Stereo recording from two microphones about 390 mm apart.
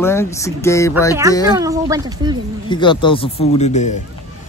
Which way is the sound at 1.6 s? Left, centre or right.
Centre.